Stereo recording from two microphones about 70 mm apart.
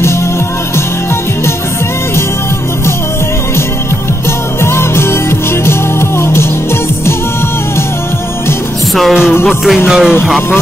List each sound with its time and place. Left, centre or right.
4.7 s music: left
9.8 s music: centre